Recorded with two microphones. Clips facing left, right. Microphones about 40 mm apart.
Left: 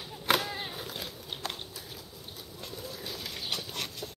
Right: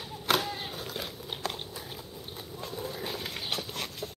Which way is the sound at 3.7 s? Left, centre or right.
Centre.